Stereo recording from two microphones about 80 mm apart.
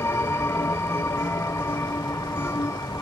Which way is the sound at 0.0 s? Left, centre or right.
Left.